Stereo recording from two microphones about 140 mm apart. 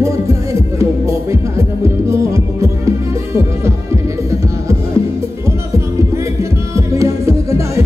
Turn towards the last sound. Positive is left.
turn(degrees=-20)  # may be behind; listen again after turning